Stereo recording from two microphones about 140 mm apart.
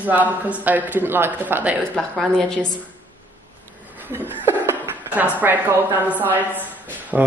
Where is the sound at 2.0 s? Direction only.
5° left (ahead or behind).